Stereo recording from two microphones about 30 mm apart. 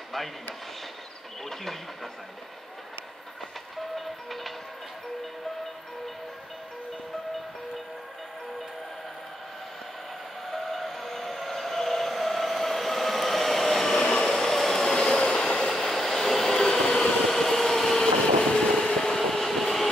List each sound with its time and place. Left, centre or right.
1.4 s speech: centre
4.0 s music: centre
10.5 s train: centre
13.9 s train: centre
15.7 s train: centre